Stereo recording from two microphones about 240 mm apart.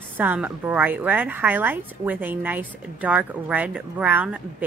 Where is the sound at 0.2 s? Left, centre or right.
Centre.